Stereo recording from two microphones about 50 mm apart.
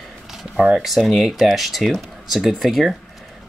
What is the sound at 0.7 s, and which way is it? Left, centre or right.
Speech, centre.